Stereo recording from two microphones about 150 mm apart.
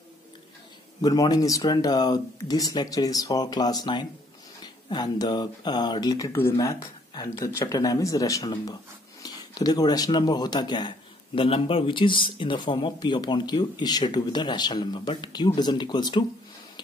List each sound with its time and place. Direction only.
1.0 s speech: 25° left (ahead or behind)